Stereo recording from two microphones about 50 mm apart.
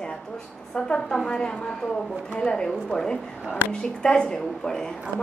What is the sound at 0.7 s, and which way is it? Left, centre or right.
A woman's voice, centre.